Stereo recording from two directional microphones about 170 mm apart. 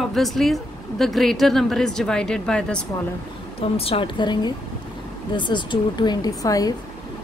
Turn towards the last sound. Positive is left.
turn(degrees=20)  # may be behind; listen again after turning